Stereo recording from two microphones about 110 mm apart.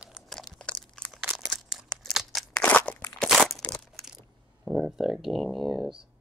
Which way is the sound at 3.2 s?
5° left (ahead or behind).